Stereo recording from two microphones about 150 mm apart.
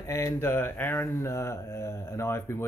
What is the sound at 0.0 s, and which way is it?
Speech, 20° left (ahead or behind).